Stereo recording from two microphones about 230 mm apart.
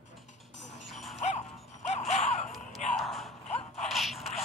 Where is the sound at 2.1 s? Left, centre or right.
Left.